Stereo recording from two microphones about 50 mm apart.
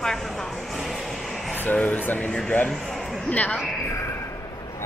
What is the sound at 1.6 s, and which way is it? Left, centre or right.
A woman's voice, left.